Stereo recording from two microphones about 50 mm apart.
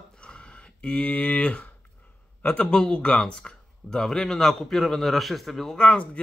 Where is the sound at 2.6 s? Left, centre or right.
Centre.